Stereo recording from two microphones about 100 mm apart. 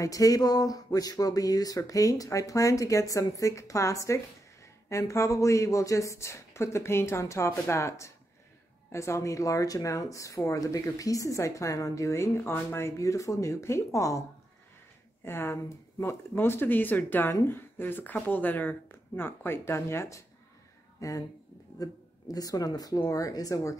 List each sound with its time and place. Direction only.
0.0 s speech: 35° left (ahead or behind)
15.2 s speech: 25° left (ahead or behind)
22.3 s speech: 35° left (ahead or behind)